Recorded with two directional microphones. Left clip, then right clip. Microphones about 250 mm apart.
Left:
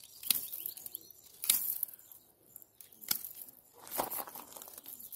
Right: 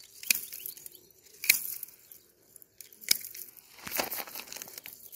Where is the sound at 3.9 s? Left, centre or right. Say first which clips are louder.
Right 3 dB; right.